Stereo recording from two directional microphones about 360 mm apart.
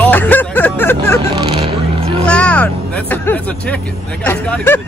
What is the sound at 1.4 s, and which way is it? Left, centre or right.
Vehicle, centre.